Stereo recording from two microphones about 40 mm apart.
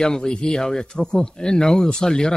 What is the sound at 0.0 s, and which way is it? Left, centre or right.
Speech, centre.